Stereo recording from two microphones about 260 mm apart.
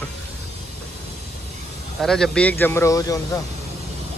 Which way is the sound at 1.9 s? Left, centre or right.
Centre.